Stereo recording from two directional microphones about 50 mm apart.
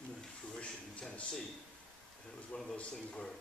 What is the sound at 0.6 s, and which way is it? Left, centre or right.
Speech, left.